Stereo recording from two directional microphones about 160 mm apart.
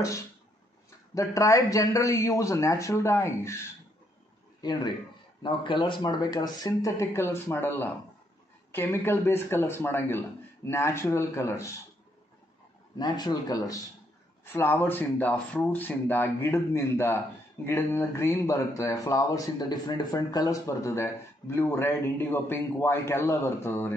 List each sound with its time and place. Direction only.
1.1 s speech: 20° left (ahead or behind)
12.9 s speech: 25° left (ahead or behind)